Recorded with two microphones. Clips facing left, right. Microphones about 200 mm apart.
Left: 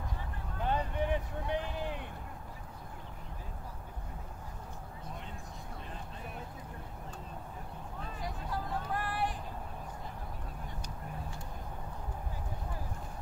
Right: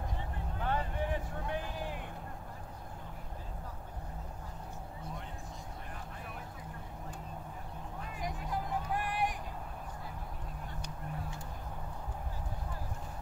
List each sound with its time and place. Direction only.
0.7 s vehicle: 20° left (ahead or behind)
8.2 s vehicle: 15° right (ahead or behind)